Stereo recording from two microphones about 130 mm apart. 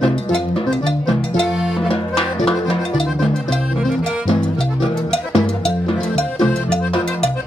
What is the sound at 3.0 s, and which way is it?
Music, centre (ahead or behind).